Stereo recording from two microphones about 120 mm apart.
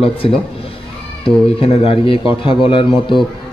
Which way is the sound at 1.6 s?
50° left (ahead or behind).